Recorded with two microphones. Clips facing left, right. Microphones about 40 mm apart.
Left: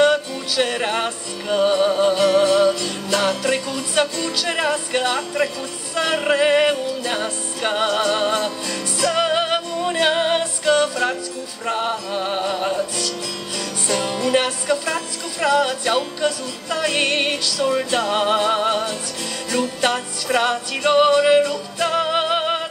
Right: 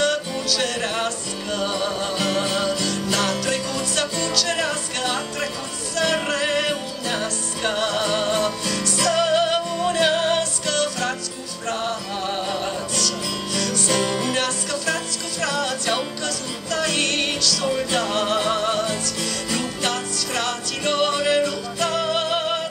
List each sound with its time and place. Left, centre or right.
0.0 s music: centre